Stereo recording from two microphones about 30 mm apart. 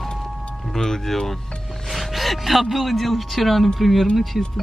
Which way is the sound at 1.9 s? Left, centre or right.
Centre.